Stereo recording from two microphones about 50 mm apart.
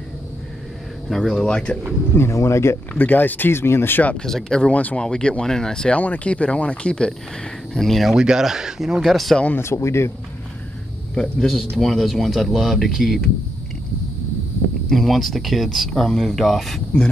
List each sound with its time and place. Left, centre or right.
1.1 s speech: centre
1.4 s speech: centre
2.1 s speech: left
3.0 s speech: left
4.2 s speech: centre
4.7 s speech: left
5.0 s speech: centre
5.9 s speech: left
7.7 s speech: centre
8.1 s speech: centre
9.6 s speech: left
11.1 s speech: centre
14.9 s speech: centre